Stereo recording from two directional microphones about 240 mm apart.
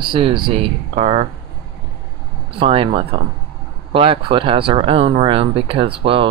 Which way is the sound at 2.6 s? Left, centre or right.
Right.